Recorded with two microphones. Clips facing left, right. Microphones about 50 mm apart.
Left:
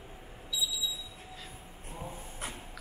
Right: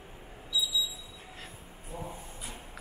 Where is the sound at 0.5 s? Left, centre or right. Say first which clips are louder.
Right 3 dB; left.